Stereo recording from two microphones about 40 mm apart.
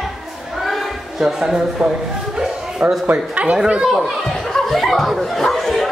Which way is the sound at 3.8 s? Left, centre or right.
Centre.